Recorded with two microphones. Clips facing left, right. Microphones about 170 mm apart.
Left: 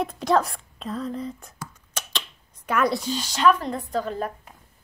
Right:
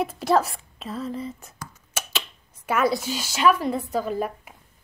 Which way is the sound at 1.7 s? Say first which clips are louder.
Right 4 dB; 5° right (ahead or behind).